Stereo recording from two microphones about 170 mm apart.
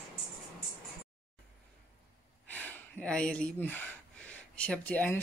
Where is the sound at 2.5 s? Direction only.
10° left (ahead or behind).